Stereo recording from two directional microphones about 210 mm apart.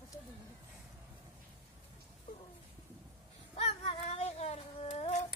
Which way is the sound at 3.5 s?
30° left (ahead or behind).